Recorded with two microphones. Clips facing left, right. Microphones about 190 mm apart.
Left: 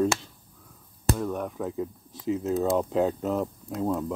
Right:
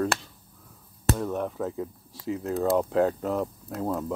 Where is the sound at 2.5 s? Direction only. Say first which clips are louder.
Right 2 dB; centre (ahead or behind).